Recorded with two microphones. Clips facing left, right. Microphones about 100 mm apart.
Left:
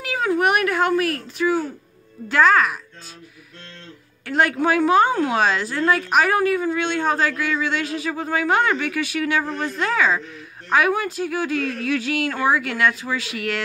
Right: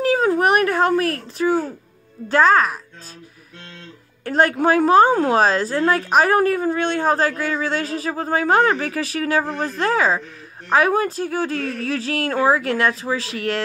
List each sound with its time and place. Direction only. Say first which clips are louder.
0.0 s a woman's voice: right 3 dB; 35° right (ahead or behind)
4.2 s a woman's voice: right 2 dB; 35° right (ahead or behind)